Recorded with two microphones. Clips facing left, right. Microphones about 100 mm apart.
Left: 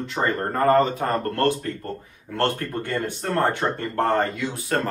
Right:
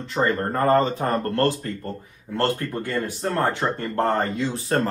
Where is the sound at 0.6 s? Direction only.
30° right (ahead or behind).